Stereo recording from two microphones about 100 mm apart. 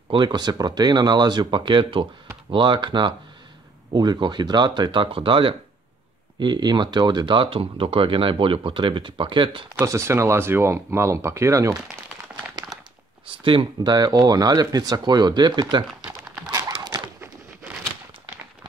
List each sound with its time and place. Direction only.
0.1 s speech: 50° right (ahead or behind)
6.4 s speech: 45° right (ahead or behind)
9.8 s speech: 30° right (ahead or behind)
13.3 s speech: 60° right (ahead or behind)
13.9 s speech: 40° right (ahead or behind)
16.7 s a sound: 45° right (ahead or behind)